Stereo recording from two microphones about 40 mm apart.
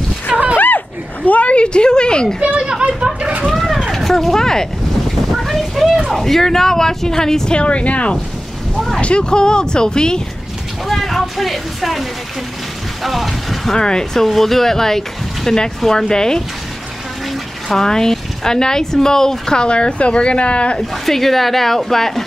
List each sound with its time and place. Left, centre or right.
0.6 s a sound: left
2.4 s a child's voice: right
3.5 s vehicle: centre
5.3 s a sound: centre
6.1 s speech: centre
7.5 s speech: left
8.7 s a sound: centre
9.0 s speech: left
10.9 s speech: centre
13.0 s a sound: centre
13.7 s speech: centre
14.2 s speech: centre
17.6 s speech: centre; by 20.8 s left
20.9 s speech: centre